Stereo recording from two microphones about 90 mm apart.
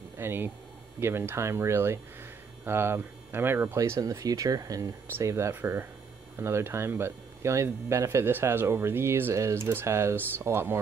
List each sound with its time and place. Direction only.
0.2 s speech: 25° right (ahead or behind)
3.7 s speech: 35° right (ahead or behind)